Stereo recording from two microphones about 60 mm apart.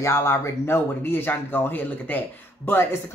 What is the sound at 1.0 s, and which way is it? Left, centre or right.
Speech, left.